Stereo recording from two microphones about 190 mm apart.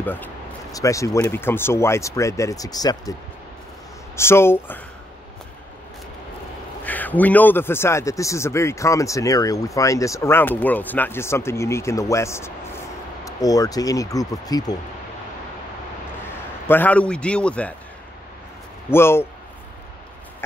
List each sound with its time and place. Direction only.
0.0 s a sound: 10° left (ahead or behind)
1.2 s speech: 10° left (ahead or behind)
4.2 s speech: 15° left (ahead or behind)
6.8 s speech: 10° left (ahead or behind)
16.3 s a man's voice: 10° left (ahead or behind)
18.9 s speech: 10° left (ahead or behind)